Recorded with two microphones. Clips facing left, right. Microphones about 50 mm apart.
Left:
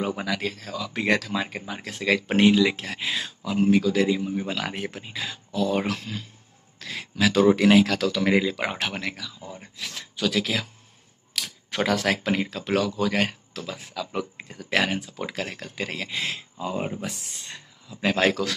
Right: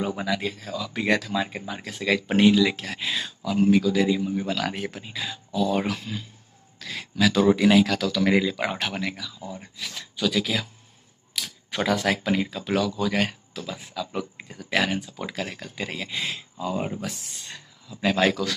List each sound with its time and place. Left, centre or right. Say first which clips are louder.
0.2 s speech: right 1 dB; left
4.3 s speech: right 2 dB; left
6.8 s speech: right 1 dB; left
9.4 s speech: right 3 dB; left
9.8 s speech: even; left
11.4 s camera: left 1 dB; left
11.7 s speech: left 1 dB; left
12.4 s speech: even; left